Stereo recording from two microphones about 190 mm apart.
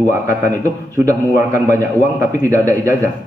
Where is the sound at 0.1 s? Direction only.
15° right (ahead or behind).